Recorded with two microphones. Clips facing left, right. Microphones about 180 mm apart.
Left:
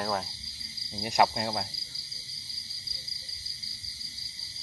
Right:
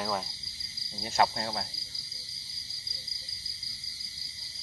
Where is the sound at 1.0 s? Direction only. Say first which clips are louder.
Left 2 dB; 20° left (ahead or behind).